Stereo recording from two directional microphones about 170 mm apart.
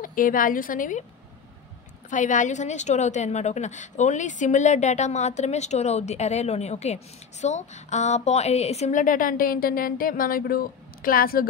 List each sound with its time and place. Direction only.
0.0 s a woman's voice: 55° left (ahead or behind)
2.0 s a woman's voice: 45° left (ahead or behind)